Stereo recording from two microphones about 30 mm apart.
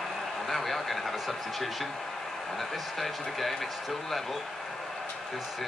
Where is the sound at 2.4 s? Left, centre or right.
Centre.